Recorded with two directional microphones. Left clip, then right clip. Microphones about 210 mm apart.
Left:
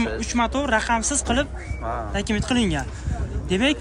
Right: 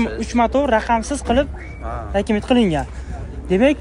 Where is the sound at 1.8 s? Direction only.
45° left (ahead or behind).